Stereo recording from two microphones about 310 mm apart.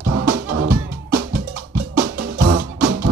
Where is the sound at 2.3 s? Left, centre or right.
Right.